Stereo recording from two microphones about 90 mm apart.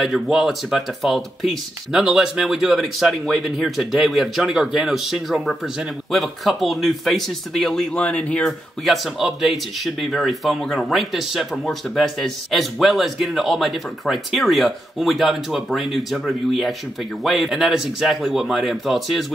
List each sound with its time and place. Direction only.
0.0 s speech: 5° right (ahead or behind); by 8.5 s 15° left (ahead or behind)
8.5 s speech: centre (ahead or behind)